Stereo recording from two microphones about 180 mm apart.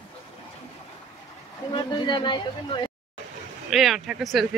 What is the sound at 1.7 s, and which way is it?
Speech, 25° left (ahead or behind).